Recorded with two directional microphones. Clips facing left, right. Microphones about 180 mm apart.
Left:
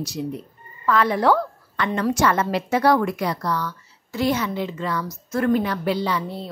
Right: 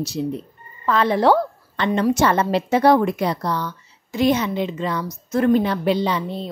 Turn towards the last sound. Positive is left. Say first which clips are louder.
# right 3 dB
turn(degrees=-20)  # may be behind; listen again after turning